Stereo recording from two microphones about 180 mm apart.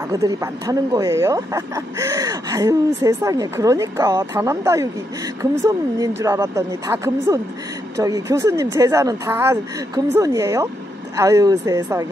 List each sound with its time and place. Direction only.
0.1 s speech: 20° right (ahead or behind)